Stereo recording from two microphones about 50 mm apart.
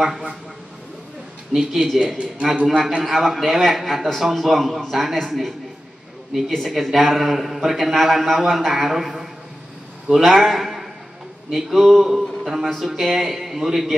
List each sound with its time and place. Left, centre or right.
0.0 s a man's voice: centre
1.5 s a man's voice: centre
2.1 s a man's voice: right
3.0 s a man's voice: centre
6.5 s a man's voice: centre